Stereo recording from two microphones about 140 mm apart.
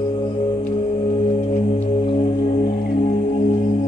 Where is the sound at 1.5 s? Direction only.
55° left (ahead or behind).